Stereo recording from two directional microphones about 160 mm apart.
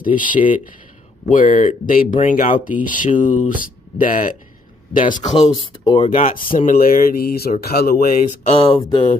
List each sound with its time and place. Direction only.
0.0 s speech: 60° left (ahead or behind)
5.7 s speech: 30° left (ahead or behind)
6.0 s speech: 55° left (ahead or behind); by 8.2 s 70° left (ahead or behind)
8.5 s speech: 35° left (ahead or behind)